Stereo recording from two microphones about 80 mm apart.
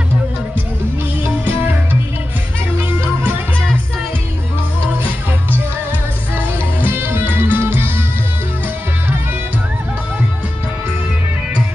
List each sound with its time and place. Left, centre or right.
1.2 s music: right
2.8 s music: right
6.3 s music: right